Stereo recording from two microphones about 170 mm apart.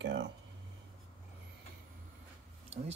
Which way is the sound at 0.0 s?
90° right.